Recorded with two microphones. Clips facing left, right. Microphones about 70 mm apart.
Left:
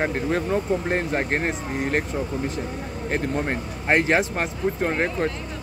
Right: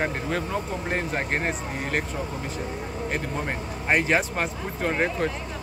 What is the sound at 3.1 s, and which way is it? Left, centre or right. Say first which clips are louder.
Speech: left 6 dB; left.